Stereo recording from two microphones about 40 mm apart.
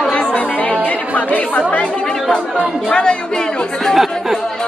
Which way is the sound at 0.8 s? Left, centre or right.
Left.